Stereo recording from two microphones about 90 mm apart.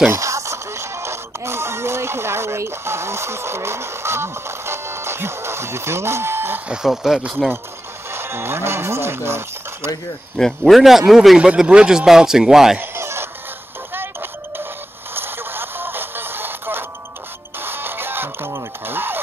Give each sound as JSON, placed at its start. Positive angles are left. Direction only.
{"t": 0.1, "sound": "music", "side_deg": -35}
{"t": 6.7, "sound": "a man's voice", "side_deg": -5}
{"t": 8.1, "sound": "speech", "side_deg": -25}
{"t": 10.3, "sound": "a man's voice", "side_deg": 5}
{"t": 12.9, "sound": "a sound", "side_deg": -30}
{"t": 15.1, "sound": "music", "side_deg": -25}
{"t": 17.6, "sound": "radio", "side_deg": -25}